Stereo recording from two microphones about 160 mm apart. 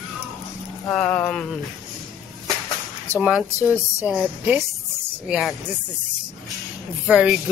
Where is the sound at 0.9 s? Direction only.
10° left (ahead or behind).